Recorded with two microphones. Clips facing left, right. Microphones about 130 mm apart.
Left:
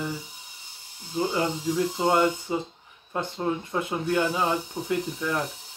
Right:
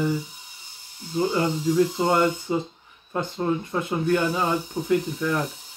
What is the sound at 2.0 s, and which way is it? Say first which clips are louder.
Speech: right 1 dB; 10° left (ahead or behind).